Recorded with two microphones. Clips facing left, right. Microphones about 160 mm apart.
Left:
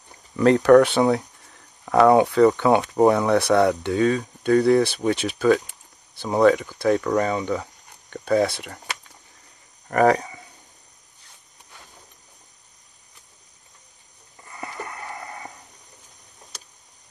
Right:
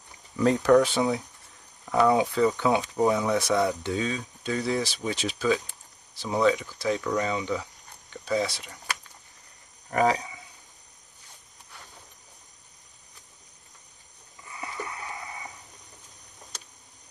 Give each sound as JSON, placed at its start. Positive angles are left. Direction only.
{"t": 0.4, "sound": "speech", "side_deg": 70}
{"t": 9.8, "sound": "speech", "side_deg": 55}
{"t": 14.5, "sound": "a sound", "side_deg": 50}